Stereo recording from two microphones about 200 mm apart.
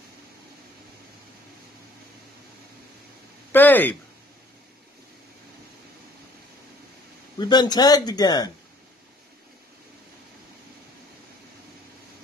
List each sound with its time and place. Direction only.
3.5 s speech: 10° left (ahead or behind)
7.3 s a man's voice: 20° left (ahead or behind)